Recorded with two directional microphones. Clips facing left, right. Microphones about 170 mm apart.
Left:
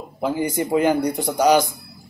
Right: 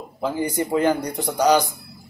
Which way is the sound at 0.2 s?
15° left (ahead or behind).